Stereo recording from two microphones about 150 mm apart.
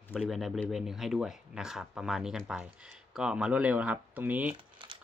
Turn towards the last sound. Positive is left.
turn(degrees=-35)  # may be behind; listen again after turning